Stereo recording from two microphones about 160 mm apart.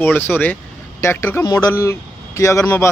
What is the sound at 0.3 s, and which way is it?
A man's voice, 10° left (ahead or behind).